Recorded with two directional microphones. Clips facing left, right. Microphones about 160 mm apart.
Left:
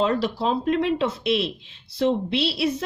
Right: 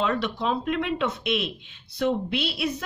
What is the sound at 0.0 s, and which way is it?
A woman's voice, 35° left (ahead or behind).